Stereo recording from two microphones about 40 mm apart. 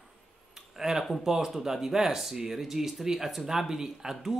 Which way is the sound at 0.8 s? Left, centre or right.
Centre.